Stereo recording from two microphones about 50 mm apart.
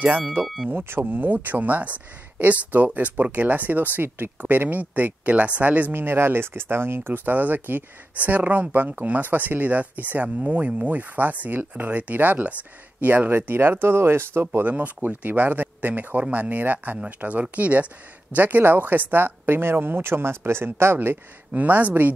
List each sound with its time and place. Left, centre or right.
0.7 s speech: right
5.9 s speech: right
14.6 s speech: right
21.5 s speech: right